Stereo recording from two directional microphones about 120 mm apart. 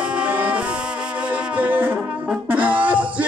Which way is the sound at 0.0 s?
10° right (ahead or behind).